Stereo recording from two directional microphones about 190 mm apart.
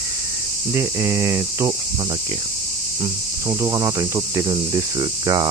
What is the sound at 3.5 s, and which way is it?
Cricket, 20° right (ahead or behind).